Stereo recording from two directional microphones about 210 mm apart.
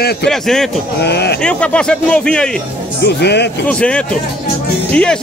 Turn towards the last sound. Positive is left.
turn(degrees=5)  # may be behind; listen again after turning